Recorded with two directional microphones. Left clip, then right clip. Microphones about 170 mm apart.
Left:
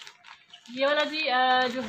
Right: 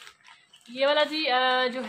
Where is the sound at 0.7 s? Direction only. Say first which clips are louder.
Right 2 dB; 65° right (ahead or behind).